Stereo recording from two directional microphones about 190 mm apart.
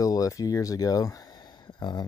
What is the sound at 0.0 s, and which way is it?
Speech, 20° left (ahead or behind).